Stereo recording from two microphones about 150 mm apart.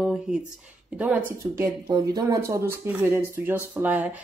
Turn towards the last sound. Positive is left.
turn(degrees=-10)  # may be behind; listen again after turning